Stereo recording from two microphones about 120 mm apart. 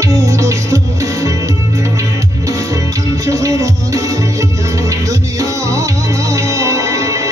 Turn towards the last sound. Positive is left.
turn(degrees=-25)  # may be behind; listen again after turning